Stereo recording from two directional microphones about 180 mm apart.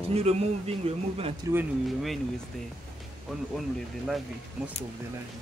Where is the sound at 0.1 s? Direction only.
35° right (ahead or behind).